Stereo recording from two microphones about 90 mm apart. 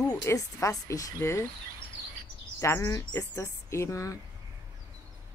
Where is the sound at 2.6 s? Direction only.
35° left (ahead or behind).